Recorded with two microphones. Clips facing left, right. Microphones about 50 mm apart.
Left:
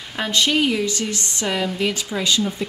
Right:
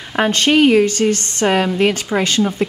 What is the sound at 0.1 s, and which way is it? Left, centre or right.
A woman's voice, right.